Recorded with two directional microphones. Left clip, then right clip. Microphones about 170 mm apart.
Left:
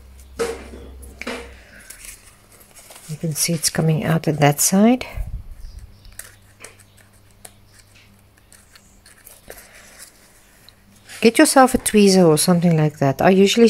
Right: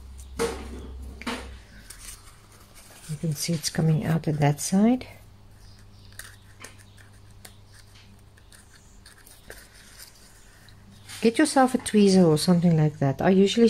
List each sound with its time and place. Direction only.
1.2 s a sound: 20° left (ahead or behind)
3.3 s speech: 20° left (ahead or behind)
6.1 s biting: centre (ahead or behind)
11.1 s speech: 30° left (ahead or behind)